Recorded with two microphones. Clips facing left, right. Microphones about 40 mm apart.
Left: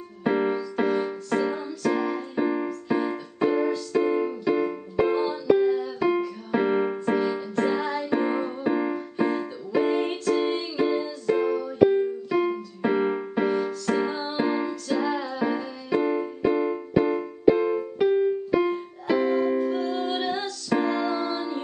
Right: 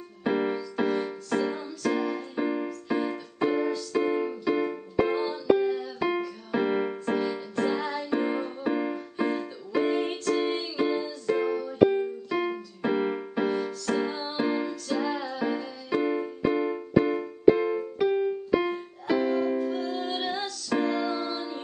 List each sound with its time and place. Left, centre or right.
0.2 s music: centre